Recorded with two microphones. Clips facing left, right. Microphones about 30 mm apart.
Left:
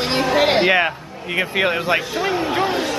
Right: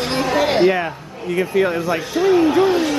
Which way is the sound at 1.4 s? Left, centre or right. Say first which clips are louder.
Right 1 dB; left.